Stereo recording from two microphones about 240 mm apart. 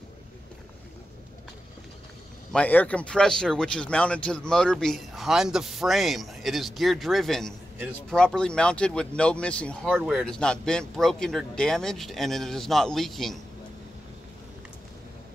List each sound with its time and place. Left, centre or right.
2.5 s speech: centre